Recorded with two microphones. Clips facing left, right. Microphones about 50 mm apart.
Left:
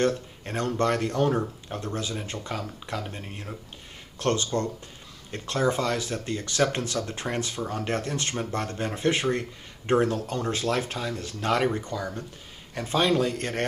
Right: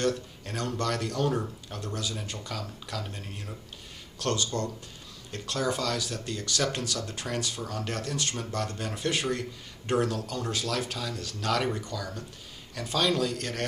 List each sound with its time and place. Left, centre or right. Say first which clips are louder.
0.0 s speech: left 3 dB; left